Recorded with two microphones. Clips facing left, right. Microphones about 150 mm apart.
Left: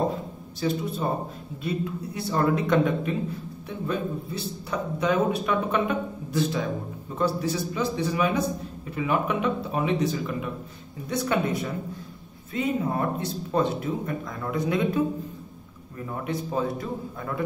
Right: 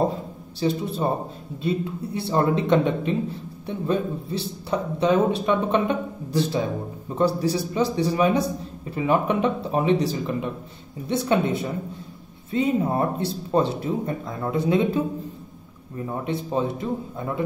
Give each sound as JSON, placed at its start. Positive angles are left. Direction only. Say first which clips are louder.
{"t": 0.6, "sound": "a man's voice", "louder": "right 3 dB", "side_deg": -30}
{"t": 16.1, "sound": "a man's voice", "louder": "right 3 dB", "side_deg": -25}